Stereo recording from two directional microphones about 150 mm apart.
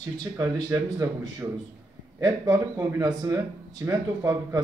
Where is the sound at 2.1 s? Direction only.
25° right (ahead or behind).